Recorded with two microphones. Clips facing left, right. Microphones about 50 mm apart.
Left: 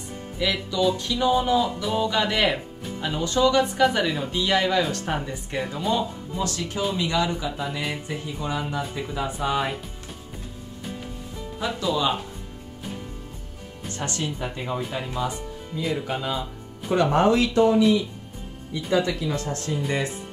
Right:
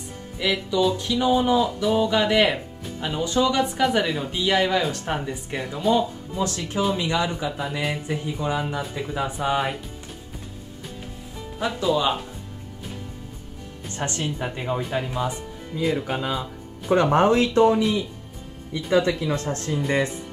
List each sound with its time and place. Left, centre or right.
0.4 s music: centre
4.3 s speech: centre
6.8 s music: centre
11.6 s music: centre
13.9 s speech: right
14.2 s music: centre
16.9 s speech: right
18.8 s music: centre
19.0 s speech: right